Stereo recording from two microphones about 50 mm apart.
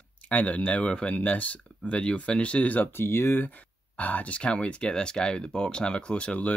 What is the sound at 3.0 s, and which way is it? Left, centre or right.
Speech, left.